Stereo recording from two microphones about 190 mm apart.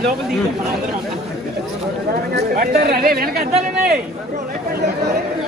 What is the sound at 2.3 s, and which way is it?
Speech, 50° right (ahead or behind).